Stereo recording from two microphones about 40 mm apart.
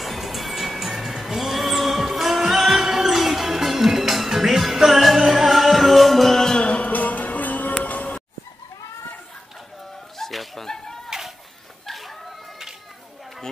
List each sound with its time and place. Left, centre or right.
0.0 s music: centre
6.6 s music: left
10.1 s music: centre
11.1 s a sound: centre